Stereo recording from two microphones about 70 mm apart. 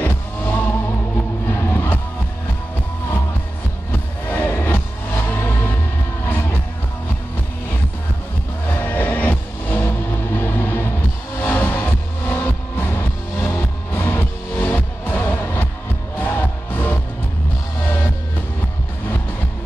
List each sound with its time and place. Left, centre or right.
0.0 s music: left
4.3 s music: left
8.7 s music: left